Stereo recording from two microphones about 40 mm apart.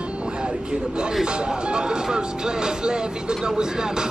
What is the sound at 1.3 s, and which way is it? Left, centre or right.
Speech, right.